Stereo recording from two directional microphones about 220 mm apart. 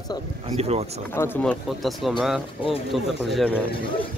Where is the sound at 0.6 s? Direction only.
30° right (ahead or behind).